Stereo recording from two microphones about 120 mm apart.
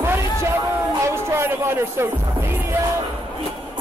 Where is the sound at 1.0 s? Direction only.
20° right (ahead or behind).